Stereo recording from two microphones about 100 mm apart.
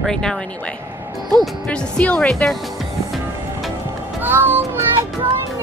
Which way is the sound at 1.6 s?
10° left (ahead or behind).